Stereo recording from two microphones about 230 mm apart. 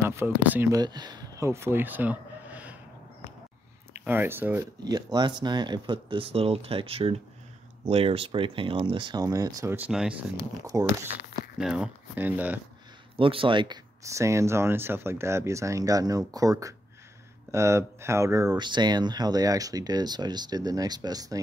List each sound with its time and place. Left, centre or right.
0.0 s speech: centre
3.9 s speech: centre
11.5 s speech: centre
13.1 s speech: right